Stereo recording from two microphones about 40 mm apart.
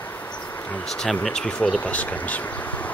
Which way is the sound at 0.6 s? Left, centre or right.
Left.